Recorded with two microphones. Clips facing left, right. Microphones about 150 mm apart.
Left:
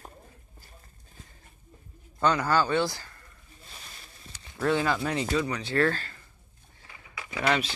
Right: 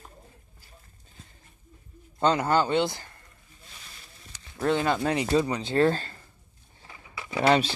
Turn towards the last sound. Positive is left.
turn(degrees=-30)  # may be behind; listen again after turning